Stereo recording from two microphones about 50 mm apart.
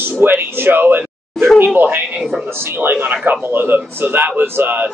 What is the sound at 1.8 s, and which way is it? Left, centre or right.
A man's voice, right.